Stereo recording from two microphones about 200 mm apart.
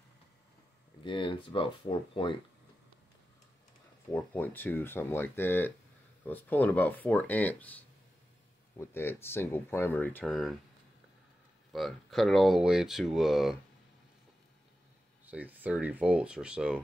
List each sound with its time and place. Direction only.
1.0 s speech: 25° left (ahead or behind)
4.1 s speech: 10° left (ahead or behind)
11.7 s speech: centre (ahead or behind)
15.2 s speech: 10° right (ahead or behind)